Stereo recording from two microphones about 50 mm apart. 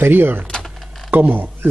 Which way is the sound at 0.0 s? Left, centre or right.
Right.